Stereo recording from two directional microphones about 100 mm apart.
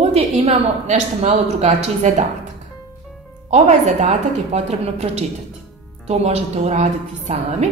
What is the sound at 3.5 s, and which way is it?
A woman's voice, 90° right.